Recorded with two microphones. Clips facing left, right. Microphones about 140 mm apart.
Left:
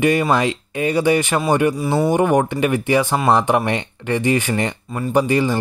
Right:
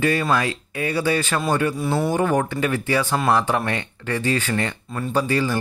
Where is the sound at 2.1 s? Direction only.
15° left (ahead or behind).